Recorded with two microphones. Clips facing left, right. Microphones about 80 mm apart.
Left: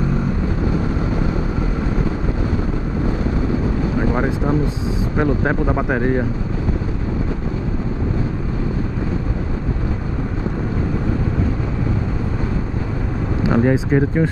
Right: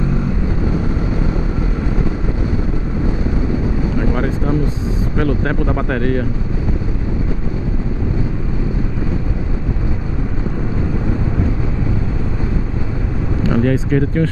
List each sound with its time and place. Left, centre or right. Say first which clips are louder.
4.0 s vehicle: left 1 dB; left
5.1 s speech: left 1 dB; left
13.4 s speech: even; left